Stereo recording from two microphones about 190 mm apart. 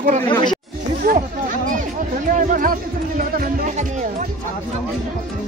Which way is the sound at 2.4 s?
45° right (ahead or behind).